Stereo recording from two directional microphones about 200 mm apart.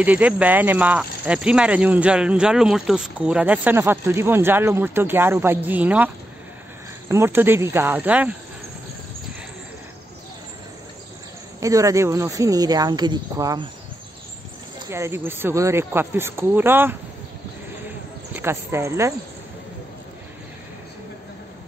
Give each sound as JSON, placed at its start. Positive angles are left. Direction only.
{"t": 0.0, "sound": "speech", "side_deg": -5}
{"t": 11.6, "sound": "speech", "side_deg": -15}
{"t": 14.9, "sound": "speech", "side_deg": -15}
{"t": 18.3, "sound": "speech", "side_deg": -10}